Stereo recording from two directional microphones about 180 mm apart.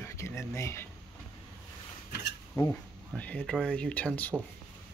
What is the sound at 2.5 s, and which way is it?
Speech, 15° left (ahead or behind).